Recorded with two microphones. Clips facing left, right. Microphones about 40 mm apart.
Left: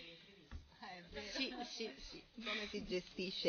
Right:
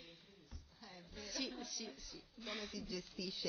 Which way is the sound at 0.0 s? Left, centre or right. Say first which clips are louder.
Left 2 dB; left.